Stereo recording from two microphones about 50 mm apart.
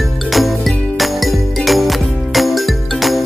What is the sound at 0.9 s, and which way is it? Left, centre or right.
Music, centre.